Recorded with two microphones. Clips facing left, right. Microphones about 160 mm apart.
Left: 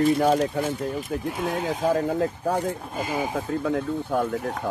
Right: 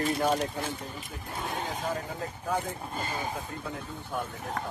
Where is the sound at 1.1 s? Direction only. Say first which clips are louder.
Left 6 dB; 65° left (ahead or behind).